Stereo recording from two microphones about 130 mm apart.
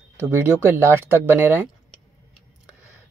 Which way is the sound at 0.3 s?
15° right (ahead or behind).